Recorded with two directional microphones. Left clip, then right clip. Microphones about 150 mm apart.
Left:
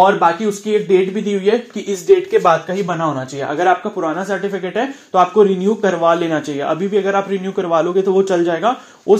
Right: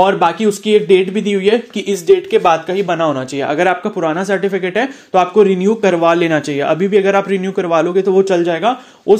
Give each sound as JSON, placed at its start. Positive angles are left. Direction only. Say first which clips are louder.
{"t": 0.0, "sound": "speech", "louder": "even", "side_deg": -40}